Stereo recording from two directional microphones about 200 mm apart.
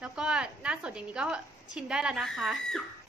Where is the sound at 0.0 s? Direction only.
5° right (ahead or behind).